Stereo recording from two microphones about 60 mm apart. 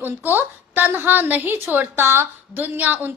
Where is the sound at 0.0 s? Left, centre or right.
Right.